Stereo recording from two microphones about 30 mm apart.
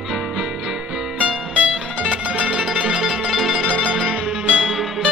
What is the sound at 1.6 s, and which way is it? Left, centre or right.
Music, right.